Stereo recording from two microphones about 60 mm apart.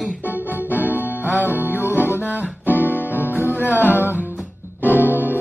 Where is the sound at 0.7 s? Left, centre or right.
Right.